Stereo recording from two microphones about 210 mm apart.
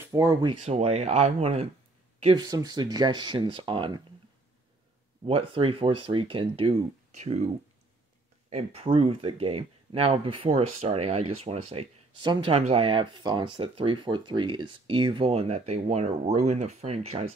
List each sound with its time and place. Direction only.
0.0 s speech: 15° right (ahead or behind)
5.2 s speech: 25° right (ahead or behind)
8.5 s speech: 30° right (ahead or behind)